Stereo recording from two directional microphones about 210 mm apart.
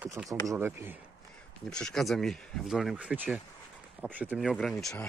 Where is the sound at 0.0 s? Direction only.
10° right (ahead or behind).